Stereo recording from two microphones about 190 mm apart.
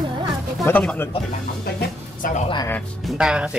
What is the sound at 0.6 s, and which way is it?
Speech, 10° left (ahead or behind).